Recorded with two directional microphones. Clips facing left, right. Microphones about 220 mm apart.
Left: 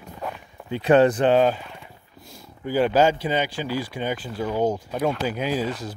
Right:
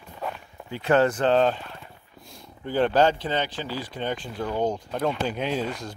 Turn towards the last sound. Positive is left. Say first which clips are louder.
# left 2 dB
turn(degrees=5)  # may be behind; listen again after turning